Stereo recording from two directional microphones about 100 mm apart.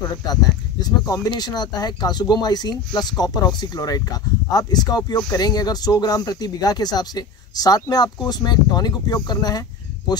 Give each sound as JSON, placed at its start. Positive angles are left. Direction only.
{"t": 0.1, "sound": "speech", "side_deg": 40}